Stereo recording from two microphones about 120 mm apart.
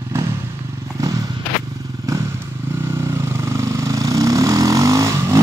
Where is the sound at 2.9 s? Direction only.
20° right (ahead or behind).